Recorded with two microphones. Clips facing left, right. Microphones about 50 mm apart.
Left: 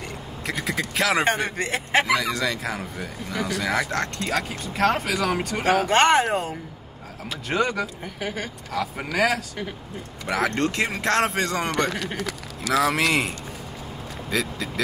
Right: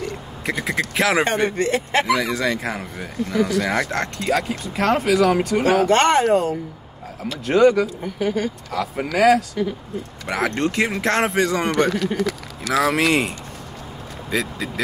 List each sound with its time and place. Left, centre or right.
0.5 s speech: centre
2.1 s speech: centre
8.7 s speech: centre
9.6 s speech: left
9.9 s speech: centre
14.3 s speech: centre